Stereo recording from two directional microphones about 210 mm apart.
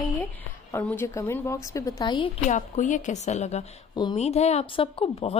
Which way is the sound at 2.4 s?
35° left (ahead or behind).